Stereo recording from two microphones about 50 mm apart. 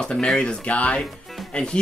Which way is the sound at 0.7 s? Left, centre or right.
Left.